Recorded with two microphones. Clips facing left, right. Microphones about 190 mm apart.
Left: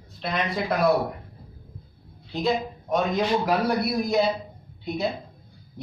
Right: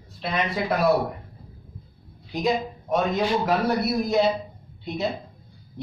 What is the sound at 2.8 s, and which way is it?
Speech, centre (ahead or behind).